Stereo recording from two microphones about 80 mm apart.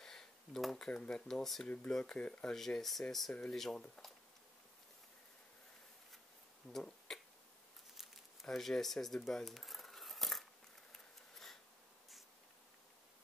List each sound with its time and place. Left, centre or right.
0.0 s speech: centre
2.5 s speech: centre
6.7 s speech: centre
7.9 s a sound: centre